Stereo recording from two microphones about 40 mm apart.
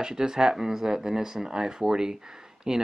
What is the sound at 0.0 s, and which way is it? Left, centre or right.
Speech, centre.